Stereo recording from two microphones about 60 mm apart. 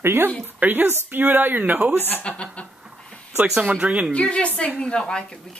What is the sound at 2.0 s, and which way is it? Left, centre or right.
Speech, left.